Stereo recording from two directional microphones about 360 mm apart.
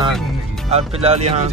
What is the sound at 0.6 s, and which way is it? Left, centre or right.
Speech, centre.